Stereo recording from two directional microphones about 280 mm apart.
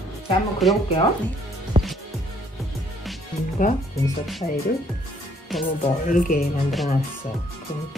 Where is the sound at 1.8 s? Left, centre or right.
Centre.